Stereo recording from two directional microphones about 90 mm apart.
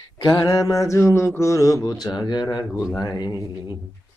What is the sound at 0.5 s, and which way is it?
Mantra, 35° left (ahead or behind).